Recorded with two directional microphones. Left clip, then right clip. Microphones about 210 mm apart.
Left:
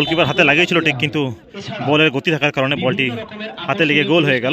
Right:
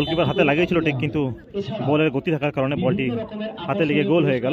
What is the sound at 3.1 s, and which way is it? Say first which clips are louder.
Speech: left 1 dB; 30° left (ahead or behind).